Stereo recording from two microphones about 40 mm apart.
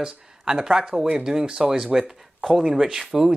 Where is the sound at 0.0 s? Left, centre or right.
Centre.